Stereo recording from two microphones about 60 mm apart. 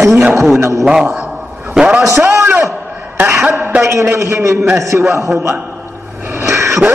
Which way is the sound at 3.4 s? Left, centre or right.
Right.